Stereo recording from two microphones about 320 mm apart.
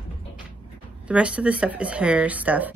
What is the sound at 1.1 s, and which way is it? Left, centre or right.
A woman's voice, centre.